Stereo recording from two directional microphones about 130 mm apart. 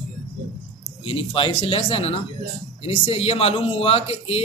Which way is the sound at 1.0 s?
45° left (ahead or behind).